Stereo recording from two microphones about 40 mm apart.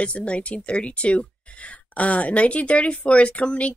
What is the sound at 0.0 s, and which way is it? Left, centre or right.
A woman's voice, left.